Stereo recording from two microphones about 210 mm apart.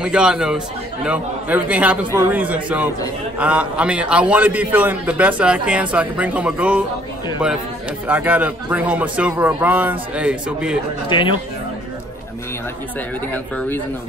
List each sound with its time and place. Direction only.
0.0 s a man's voice: 5° right (ahead or behind)
8.1 s speech: 10° right (ahead or behind)
11.1 s speech: 20° left (ahead or behind)
13.3 s speech: 5° left (ahead or behind)